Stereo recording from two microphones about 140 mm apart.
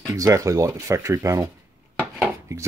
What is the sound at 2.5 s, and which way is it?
Speech, 20° right (ahead or behind).